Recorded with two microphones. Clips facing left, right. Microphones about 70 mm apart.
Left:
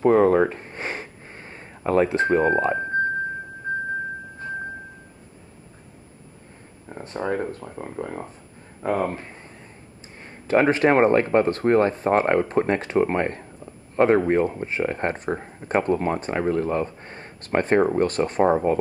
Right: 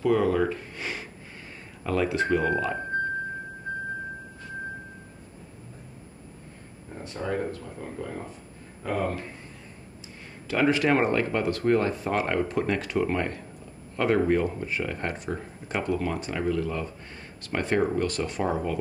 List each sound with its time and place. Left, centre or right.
0.0 s sniff: left
6.9 s a sound: left
7.5 s speech: left
10.2 s speech: left